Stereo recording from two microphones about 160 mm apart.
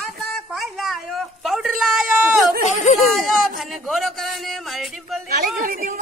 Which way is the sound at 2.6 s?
50° left (ahead or behind).